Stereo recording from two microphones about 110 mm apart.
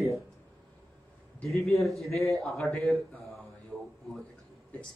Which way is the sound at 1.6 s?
Centre (ahead or behind).